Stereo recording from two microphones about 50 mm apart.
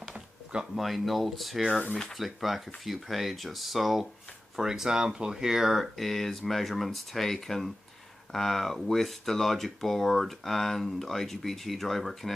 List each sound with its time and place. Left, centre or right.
0.1 s drawer open or close: centre
0.7 s speech: centre